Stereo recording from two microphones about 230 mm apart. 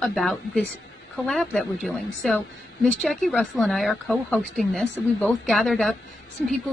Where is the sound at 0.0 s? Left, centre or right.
Centre.